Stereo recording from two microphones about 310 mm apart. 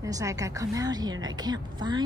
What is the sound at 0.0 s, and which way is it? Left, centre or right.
A woman's voice, centre.